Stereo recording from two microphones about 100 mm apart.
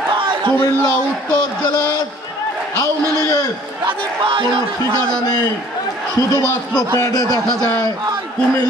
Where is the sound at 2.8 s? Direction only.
35° left (ahead or behind).